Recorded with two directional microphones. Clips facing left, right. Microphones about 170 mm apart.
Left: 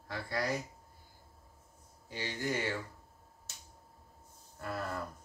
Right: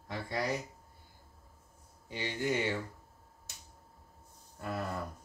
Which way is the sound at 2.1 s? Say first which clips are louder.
Right 3 dB; 15° right (ahead or behind).